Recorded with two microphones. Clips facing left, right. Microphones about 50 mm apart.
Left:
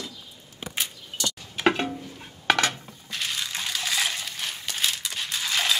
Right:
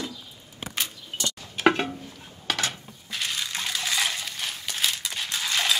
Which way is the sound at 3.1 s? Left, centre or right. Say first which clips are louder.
Even; centre.